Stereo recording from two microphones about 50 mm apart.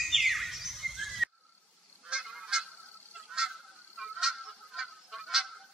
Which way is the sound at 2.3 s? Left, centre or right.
Centre.